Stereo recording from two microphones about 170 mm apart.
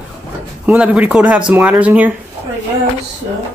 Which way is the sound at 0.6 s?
10° right (ahead or behind).